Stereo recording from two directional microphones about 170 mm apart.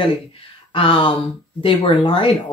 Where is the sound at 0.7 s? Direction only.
30° left (ahead or behind).